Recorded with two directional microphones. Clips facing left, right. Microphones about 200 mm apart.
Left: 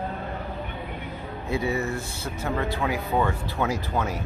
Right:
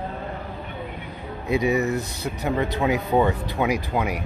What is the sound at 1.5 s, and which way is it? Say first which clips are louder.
Speech: right 5 dB; 15° right (ahead or behind).